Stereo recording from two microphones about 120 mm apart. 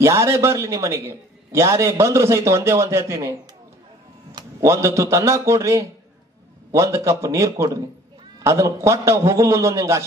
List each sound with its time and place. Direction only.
0.0 s a man's voice: 25° right (ahead or behind)
4.4 s a man's voice: 25° right (ahead or behind)